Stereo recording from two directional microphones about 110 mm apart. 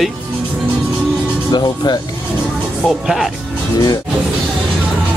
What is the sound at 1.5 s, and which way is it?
Speech, 40° left (ahead or behind).